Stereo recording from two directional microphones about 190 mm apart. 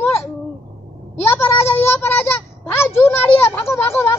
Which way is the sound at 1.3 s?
10° left (ahead or behind).